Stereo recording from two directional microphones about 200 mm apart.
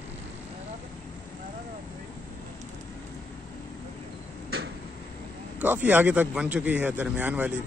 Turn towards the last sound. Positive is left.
turn(degrees=-5)  # may be behind; listen again after turning